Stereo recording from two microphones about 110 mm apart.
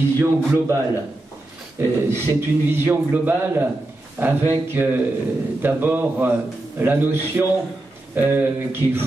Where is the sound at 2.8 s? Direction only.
20° right (ahead or behind).